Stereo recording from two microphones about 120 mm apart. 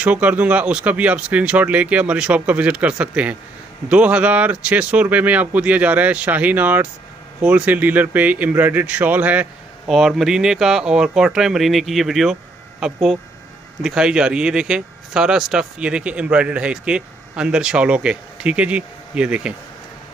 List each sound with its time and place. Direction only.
0.0 s speech: 10° right (ahead or behind)
9.8 s speech: centre (ahead or behind)